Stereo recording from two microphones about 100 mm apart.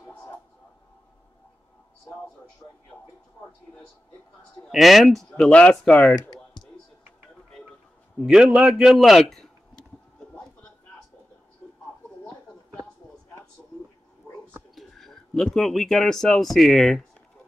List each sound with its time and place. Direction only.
2.9 s speech: 15° left (ahead or behind)
4.6 s speech: centre (ahead or behind)
8.3 s a man's voice: 10° right (ahead or behind)
14.2 s cat: 30° left (ahead or behind)
14.8 s speech: centre (ahead or behind)